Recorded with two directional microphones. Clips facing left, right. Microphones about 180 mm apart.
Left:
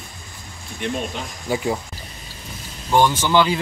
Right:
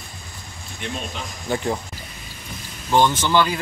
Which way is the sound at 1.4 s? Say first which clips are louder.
Left 1 dB; 5° left (ahead or behind).